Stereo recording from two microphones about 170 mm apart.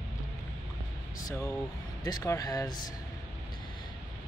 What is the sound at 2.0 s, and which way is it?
Speech, 20° left (ahead or behind).